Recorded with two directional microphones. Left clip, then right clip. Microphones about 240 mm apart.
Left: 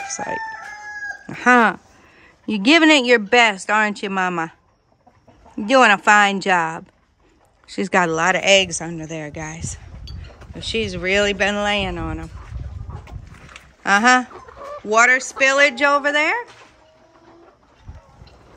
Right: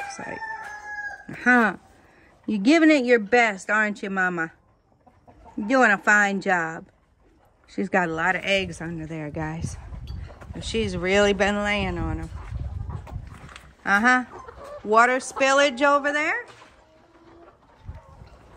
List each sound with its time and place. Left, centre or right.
1.2 s speech: centre
5.7 s speech: centre
7.9 s speech: right
8.2 s speech: centre
10.0 s a sound: centre
14.6 s speech: centre